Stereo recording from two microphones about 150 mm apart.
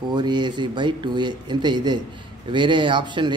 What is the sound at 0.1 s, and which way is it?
A man's voice, 30° right (ahead or behind).